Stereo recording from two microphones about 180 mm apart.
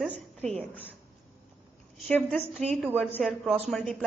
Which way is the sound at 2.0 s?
5° left (ahead or behind).